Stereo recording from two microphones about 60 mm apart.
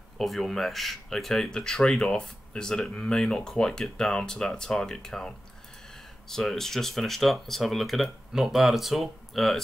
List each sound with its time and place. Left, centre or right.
0.2 s speech: centre